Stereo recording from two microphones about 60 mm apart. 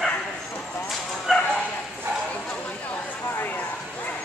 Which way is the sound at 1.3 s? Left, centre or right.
Centre.